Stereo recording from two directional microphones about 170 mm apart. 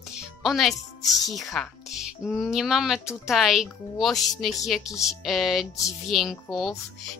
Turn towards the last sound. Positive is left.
turn(degrees=0)  # may be behind; listen again after turning